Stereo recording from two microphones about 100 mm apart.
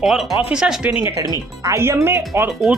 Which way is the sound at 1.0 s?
40° right (ahead or behind).